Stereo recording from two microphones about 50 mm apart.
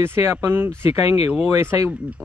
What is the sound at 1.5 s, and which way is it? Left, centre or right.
Speech, right.